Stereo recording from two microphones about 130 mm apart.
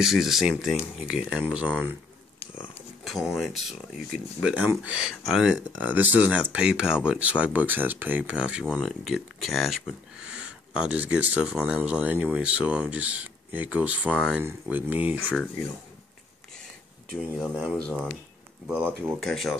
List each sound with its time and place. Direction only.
0.0 s speech: 5° right (ahead or behind)
3.0 s speech: centre (ahead or behind)
17.2 s speech: 10° right (ahead or behind)
19.1 s speech: centre (ahead or behind)